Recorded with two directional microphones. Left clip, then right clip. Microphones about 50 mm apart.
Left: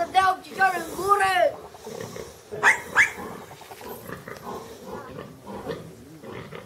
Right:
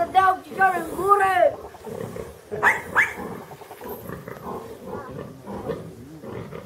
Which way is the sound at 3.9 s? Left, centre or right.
Left.